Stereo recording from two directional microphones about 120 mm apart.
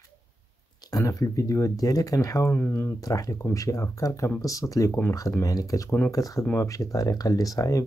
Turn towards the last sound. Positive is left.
turn(degrees=30)  # may be behind; listen again after turning